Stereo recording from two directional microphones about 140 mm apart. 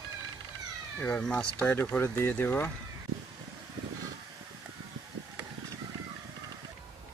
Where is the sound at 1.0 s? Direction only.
10° left (ahead or behind).